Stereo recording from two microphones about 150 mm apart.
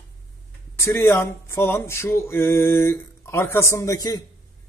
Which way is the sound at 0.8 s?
20° left (ahead or behind).